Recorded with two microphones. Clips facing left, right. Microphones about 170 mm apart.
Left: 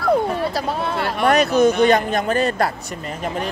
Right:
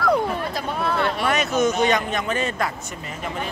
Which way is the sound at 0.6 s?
30° left (ahead or behind).